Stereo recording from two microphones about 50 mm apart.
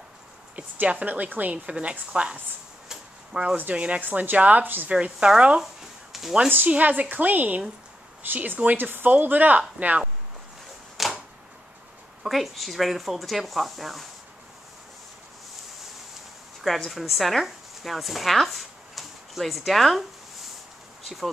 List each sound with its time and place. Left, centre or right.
0.6 s a woman's voice: right
2.9 s a sound: centre
3.7 s a woman's voice: right
4.8 s a woman's voice: right
5.6 s a sound: centre
6.7 s speech: right
11.0 s typewriter: centre
12.2 s speech: centre
16.6 s a woman's voice: centre